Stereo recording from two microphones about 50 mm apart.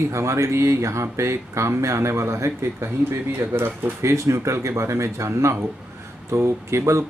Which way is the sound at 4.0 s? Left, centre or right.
Right.